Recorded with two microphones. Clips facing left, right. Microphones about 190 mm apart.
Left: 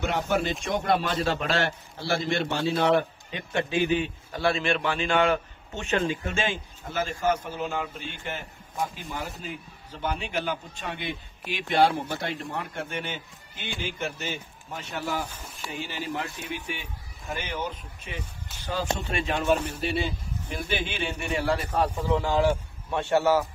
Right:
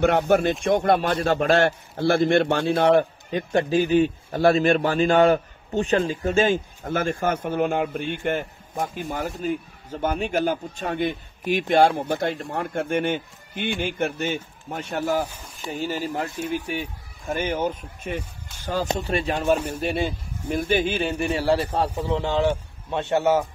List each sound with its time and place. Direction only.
0.0 s a man's voice: 55° right (ahead or behind); by 23.4 s 20° right (ahead or behind)